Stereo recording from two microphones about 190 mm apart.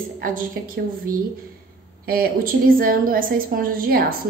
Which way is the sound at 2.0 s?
50° right (ahead or behind).